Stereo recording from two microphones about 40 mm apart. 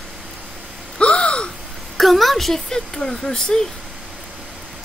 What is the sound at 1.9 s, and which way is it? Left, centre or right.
Speech, centre.